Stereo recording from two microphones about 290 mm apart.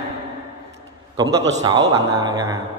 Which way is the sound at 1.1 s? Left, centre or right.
Centre.